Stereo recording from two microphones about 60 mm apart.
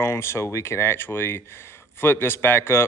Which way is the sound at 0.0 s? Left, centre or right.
Left.